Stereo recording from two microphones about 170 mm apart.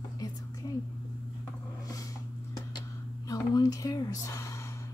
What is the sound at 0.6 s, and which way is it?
Whispering, 20° left (ahead or behind).